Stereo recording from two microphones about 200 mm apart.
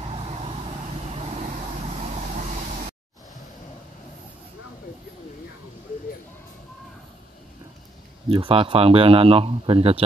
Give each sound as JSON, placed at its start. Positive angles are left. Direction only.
{"t": 0.0, "sound": "vehicle", "side_deg": -30}
{"t": 8.3, "sound": "speech", "side_deg": -25}